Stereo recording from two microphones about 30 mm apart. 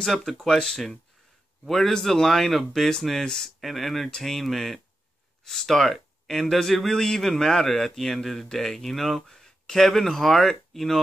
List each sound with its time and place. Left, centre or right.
0.0 s speech: centre